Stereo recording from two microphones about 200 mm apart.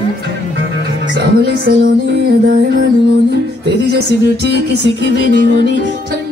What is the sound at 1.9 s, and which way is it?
Music, 50° right (ahead or behind).